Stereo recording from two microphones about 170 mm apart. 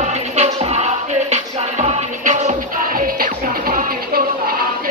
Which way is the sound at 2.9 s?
55° right (ahead or behind).